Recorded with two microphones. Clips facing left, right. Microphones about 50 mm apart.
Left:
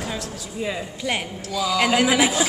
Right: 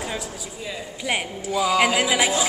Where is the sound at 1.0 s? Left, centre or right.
Centre.